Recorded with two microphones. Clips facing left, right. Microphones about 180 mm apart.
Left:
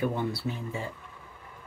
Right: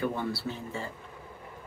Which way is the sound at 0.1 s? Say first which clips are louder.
Left 2 dB; 15° left (ahead or behind).